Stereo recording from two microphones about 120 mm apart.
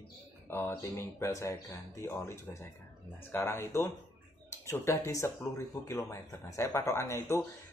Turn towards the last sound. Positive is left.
turn(degrees=25)  # may be behind; listen again after turning